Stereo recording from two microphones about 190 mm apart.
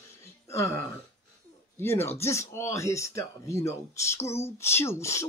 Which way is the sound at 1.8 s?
10° left (ahead or behind).